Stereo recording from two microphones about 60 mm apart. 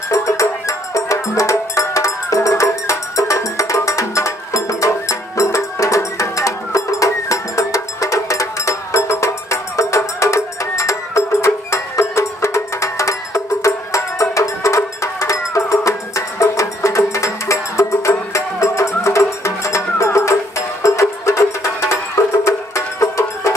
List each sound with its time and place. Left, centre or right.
0.1 s music: left